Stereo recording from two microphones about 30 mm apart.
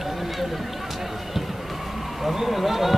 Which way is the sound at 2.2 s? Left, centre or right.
Centre.